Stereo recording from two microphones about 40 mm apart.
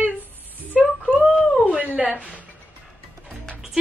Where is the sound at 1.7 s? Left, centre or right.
Right.